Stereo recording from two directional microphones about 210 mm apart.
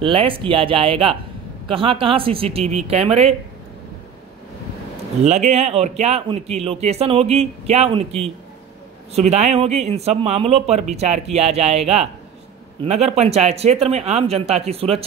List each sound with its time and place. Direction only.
0.0 s a man's voice: 25° right (ahead or behind)
5.2 s a man's voice: 35° right (ahead or behind)